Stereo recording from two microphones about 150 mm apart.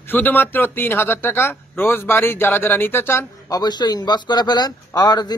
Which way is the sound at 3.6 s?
30° left (ahead or behind).